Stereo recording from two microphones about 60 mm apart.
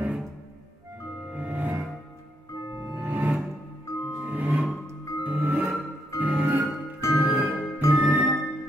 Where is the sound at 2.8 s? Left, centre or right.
Right.